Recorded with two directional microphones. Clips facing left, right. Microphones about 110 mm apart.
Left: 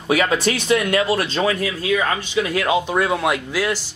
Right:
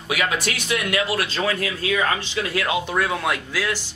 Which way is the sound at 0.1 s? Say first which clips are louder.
Left 6 dB; 35° left (ahead or behind).